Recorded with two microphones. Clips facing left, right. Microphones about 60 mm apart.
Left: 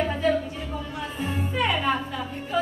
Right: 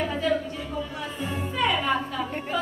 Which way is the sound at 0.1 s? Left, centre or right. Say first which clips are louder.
Left 2 dB; left.